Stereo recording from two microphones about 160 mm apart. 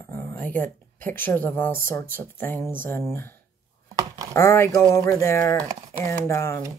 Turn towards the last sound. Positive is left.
turn(degrees=15)  # may be behind; listen again after turning